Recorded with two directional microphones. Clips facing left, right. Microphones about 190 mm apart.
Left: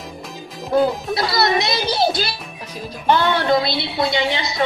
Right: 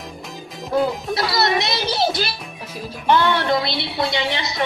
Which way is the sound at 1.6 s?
25° left (ahead or behind).